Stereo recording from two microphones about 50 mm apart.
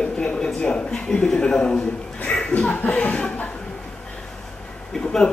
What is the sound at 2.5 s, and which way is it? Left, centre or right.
Speech, left.